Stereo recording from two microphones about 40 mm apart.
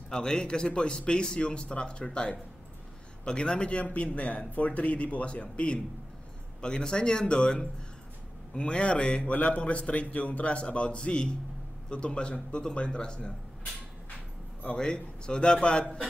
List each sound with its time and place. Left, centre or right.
0.1 s a man's voice: centre
3.8 s a man's voice: left
14.8 s a man's voice: left